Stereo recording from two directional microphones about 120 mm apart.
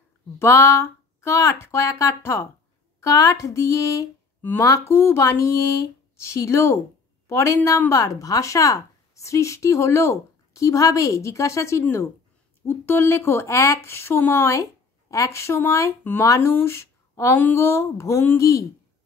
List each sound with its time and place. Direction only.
0.4 s a woman's voice: 20° left (ahead or behind)